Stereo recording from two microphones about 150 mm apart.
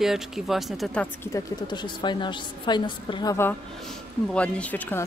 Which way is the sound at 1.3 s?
20° left (ahead or behind).